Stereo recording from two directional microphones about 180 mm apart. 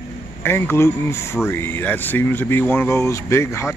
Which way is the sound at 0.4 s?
10° left (ahead or behind).